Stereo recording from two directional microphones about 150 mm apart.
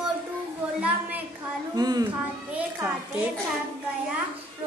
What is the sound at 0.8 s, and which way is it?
Speech, 10° right (ahead or behind).